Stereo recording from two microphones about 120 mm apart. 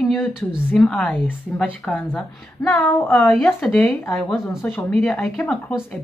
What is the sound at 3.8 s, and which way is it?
Speech, 15° left (ahead or behind).